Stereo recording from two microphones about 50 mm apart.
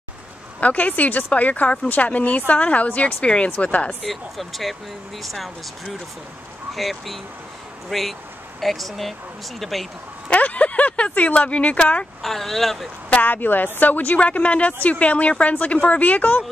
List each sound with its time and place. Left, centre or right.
0.6 s speech: left
4.0 s speech: centre
6.7 s speech: centre
10.3 s speech: left
12.2 s speech: centre
13.1 s speech: left